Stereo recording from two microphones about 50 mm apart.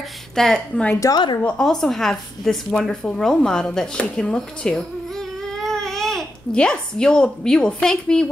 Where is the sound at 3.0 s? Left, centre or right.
Centre.